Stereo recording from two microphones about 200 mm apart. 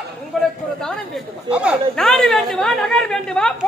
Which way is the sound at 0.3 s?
Centre (ahead or behind).